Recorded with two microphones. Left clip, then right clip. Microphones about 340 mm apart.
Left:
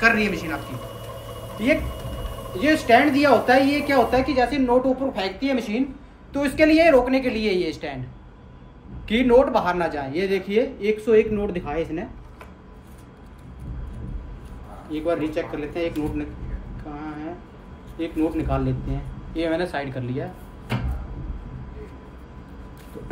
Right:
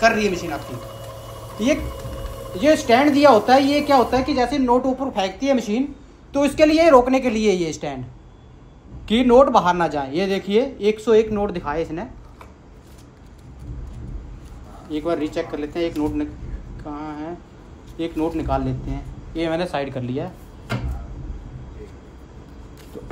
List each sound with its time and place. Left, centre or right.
0.0 s a man's voice: centre
2.6 s a man's voice: centre
9.0 s a man's voice: centre
14.9 s speech: centre
15.3 s speech: centre
17.9 s a man's voice: centre